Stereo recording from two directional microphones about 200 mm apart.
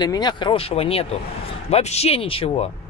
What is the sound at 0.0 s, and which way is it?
Speech, 20° left (ahead or behind).